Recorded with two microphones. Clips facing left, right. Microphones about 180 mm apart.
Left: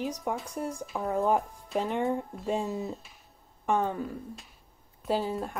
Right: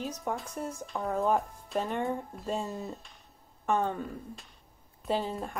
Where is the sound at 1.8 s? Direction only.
15° left (ahead or behind).